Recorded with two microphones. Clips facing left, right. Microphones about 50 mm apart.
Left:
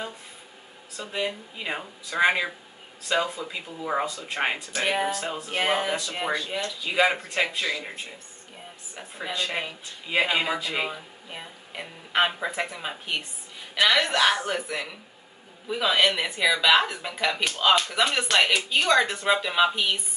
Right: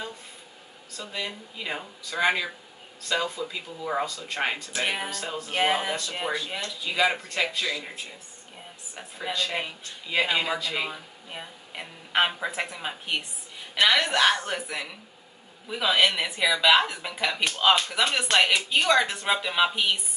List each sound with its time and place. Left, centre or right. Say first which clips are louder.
0.9 s a man's voice: left 4 dB; left
4.7 s speech: left 4 dB; centre
5.9 s a man's voice: left 2 dB; centre
6.3 s speech: left 2 dB; centre
6.9 s a man's voice: left 2 dB; centre
9.3 s a man's voice: even; centre
10.9 s speech: left 1 dB; centre